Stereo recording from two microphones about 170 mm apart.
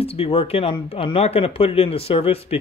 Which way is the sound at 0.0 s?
35° left (ahead or behind).